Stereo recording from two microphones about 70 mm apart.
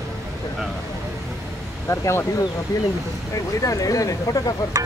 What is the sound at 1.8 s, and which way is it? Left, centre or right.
Speech, left.